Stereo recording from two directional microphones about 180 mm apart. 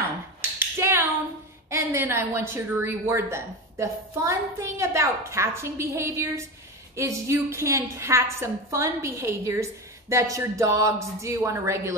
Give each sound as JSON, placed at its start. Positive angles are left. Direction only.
{"t": 0.4, "sound": "finger snapping", "side_deg": -15}
{"t": 1.7, "sound": "a woman's voice", "side_deg": -15}